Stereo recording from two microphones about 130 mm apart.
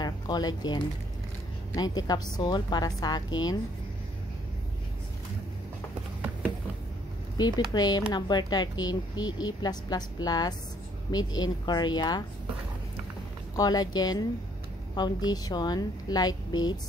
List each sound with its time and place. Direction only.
0.0 s a woman's voice: 30° left (ahead or behind)
7.3 s a woman's voice: 30° left (ahead or behind)
13.6 s a woman's voice: 30° left (ahead or behind)